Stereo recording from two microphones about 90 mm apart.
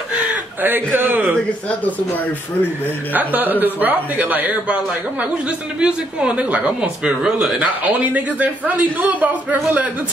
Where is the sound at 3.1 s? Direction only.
20° right (ahead or behind).